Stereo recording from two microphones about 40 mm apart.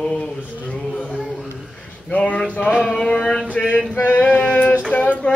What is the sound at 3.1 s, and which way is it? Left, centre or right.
Male singing, centre.